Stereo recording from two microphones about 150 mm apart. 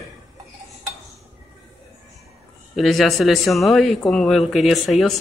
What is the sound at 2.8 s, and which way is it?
A man's voice, centre (ahead or behind).